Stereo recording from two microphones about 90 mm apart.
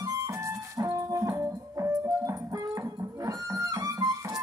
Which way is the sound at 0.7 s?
35° right (ahead or behind).